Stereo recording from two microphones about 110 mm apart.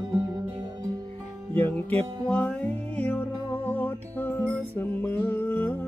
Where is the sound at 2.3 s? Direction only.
15° left (ahead or behind).